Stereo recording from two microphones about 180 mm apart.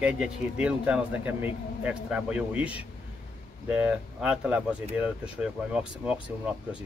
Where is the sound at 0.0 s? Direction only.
5° right (ahead or behind).